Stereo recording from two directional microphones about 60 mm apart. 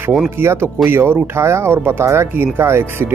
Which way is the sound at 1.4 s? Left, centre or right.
Right.